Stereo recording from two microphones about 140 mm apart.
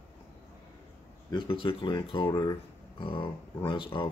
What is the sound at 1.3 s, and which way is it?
Speech, 35° left (ahead or behind).